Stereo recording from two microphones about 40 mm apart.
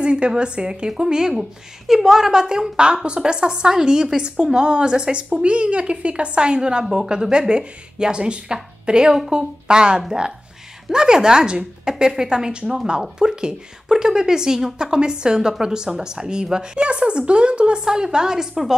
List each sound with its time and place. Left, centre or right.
0.0 s a woman's voice: right